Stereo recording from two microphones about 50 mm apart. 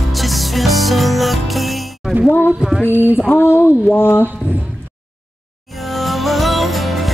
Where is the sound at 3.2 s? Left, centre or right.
Left.